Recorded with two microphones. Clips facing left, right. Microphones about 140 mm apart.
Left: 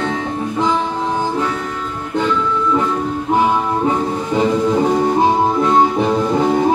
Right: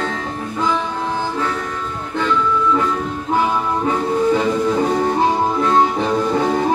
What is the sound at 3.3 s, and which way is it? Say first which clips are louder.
Music: left 2 dB; 20° left (ahead or behind).